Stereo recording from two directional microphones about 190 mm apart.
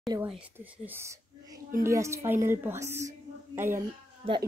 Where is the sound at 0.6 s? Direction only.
10° right (ahead or behind).